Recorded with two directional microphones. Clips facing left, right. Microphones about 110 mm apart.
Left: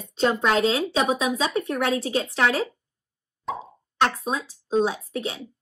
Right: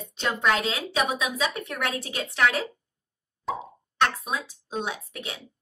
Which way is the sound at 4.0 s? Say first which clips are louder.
Left 2 dB; 30° left (ahead or behind).